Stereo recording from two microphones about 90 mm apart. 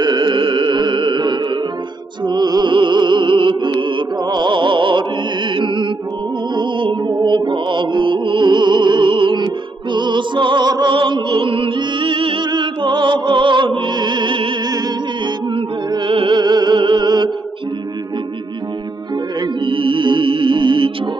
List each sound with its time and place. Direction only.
0.0 s music: 55° right (ahead or behind)
2.7 s music: 60° right (ahead or behind)
12.4 s music: 60° right (ahead or behind)
16.1 s music: 70° right (ahead or behind)
19.4 s music: 70° right (ahead or behind)